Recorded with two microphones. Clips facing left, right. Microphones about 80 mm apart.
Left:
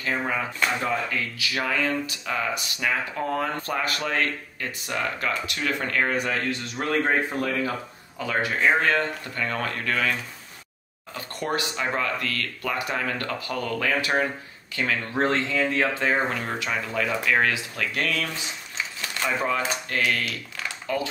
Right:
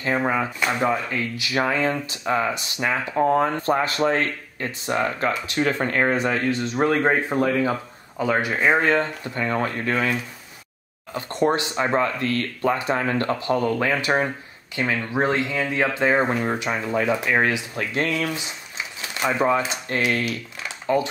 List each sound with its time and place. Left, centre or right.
0.0 s speech: right
11.1 s speech: right
18.9 s a sound: centre
19.9 s speech: right